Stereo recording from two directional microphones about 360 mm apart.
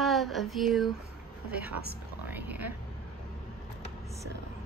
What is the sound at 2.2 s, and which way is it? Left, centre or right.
Speech, centre.